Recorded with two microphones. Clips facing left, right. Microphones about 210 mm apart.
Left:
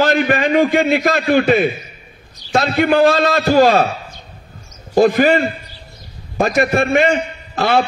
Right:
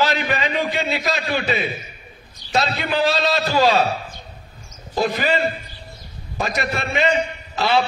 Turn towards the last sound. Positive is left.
turn(degrees=50)  # may be behind; listen again after turning